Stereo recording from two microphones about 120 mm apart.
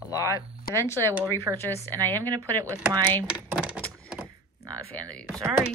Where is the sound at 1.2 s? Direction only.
30° right (ahead or behind).